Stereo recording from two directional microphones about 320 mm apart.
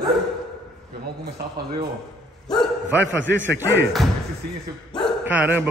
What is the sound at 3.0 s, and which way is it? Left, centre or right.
Speech, right.